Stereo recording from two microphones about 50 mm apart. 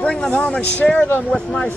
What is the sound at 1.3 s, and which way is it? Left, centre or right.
Speech, centre.